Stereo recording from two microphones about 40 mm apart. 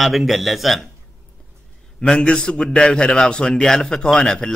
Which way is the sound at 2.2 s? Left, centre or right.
Left.